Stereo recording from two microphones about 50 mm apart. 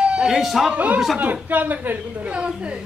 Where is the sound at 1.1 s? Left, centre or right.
Right.